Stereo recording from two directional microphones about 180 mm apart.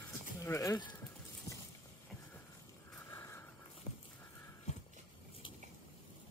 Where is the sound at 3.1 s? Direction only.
15° left (ahead or behind).